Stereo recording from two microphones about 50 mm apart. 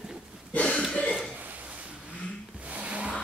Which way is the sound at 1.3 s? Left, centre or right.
Right.